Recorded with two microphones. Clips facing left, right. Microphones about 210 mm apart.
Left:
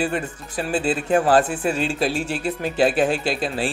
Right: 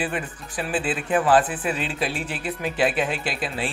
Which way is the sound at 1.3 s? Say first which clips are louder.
Left 3 dB; 45° left (ahead or behind).